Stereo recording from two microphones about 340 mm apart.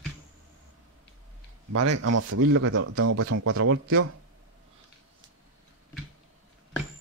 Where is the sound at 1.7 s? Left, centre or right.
Right.